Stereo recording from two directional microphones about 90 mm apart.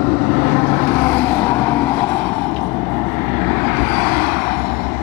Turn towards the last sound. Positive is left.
turn(degrees=25)  # may be behind; listen again after turning